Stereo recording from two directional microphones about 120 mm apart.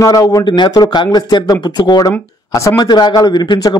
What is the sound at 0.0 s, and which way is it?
A man's voice, 30° left (ahead or behind).